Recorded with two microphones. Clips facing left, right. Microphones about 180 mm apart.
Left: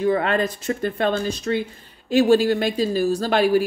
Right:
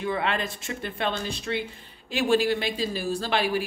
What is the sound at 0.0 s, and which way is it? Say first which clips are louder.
Speech: left 8 dB; 45° left (ahead or behind).